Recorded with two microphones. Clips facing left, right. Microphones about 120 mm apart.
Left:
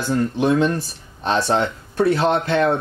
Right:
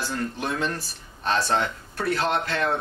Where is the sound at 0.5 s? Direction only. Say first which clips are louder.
Left 9 dB; 20° left (ahead or behind).